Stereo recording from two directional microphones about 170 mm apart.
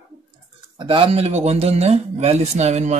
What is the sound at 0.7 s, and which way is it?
Speech, 30° right (ahead or behind).